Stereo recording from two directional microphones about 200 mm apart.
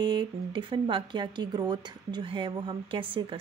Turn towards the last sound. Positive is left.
turn(degrees=-25)  # may be behind; listen again after turning